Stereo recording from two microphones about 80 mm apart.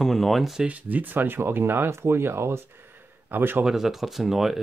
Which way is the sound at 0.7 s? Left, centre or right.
Right.